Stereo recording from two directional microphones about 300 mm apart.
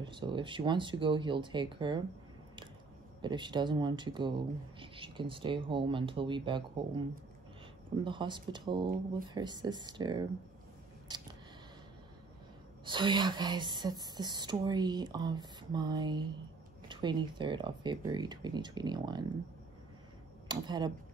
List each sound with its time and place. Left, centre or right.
0.0 s speech: centre
3.2 s speech: centre
8.0 s speech: centre
11.1 s a sound: centre
12.8 s speech: centre
20.4 s speech: centre